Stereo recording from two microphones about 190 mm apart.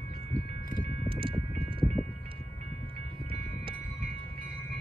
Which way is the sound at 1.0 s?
25° right (ahead or behind).